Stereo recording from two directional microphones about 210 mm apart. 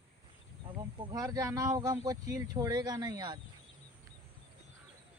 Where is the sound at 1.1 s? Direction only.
15° right (ahead or behind).